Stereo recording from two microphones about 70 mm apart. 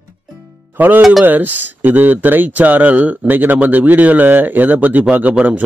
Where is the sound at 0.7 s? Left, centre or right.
Right.